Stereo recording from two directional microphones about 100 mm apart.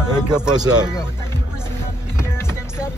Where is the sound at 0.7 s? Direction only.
10° right (ahead or behind).